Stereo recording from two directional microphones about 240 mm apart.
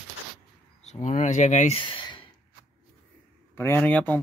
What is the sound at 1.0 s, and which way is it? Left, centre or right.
Speech, left.